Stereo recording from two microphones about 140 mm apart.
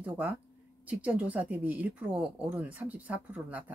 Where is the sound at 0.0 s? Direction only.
10° right (ahead or behind).